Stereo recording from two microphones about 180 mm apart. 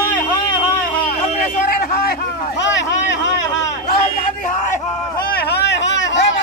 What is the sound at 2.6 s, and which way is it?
Vehicle, 85° left.